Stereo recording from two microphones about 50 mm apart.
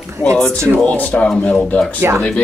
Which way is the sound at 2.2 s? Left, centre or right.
Centre.